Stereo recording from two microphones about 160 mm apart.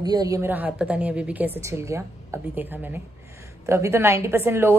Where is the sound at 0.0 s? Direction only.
25° right (ahead or behind).